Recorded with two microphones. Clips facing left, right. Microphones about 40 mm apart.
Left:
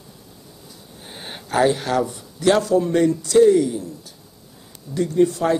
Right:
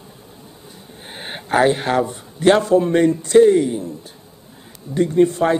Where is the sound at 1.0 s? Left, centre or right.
Right.